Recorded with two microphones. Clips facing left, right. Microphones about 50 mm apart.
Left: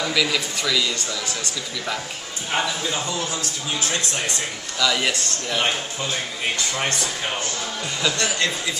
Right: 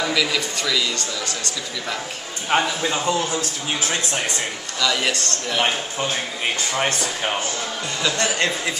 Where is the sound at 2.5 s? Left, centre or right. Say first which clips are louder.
Right 4 dB; right.